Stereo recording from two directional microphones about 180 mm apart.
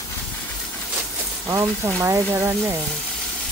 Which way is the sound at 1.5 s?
15° right (ahead or behind).